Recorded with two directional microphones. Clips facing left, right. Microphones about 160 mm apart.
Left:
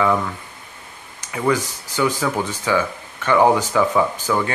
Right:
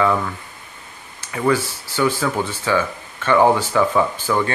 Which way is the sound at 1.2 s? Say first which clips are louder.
Right 1 dB; 15° left (ahead or behind).